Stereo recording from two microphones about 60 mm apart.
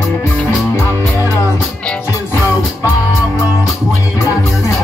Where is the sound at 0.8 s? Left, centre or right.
Left.